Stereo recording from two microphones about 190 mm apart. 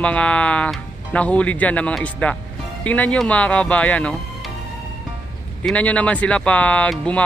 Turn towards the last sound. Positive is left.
turn(degrees=5)  # may be behind; listen again after turning